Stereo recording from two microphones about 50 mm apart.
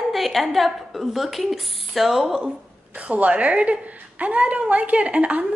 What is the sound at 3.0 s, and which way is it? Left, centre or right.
A woman's voice, right.